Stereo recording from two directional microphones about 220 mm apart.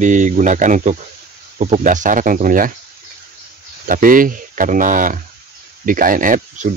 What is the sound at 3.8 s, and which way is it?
Speech, 40° right (ahead or behind).